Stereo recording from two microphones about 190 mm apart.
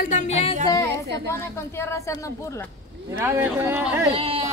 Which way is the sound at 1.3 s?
15° left (ahead or behind).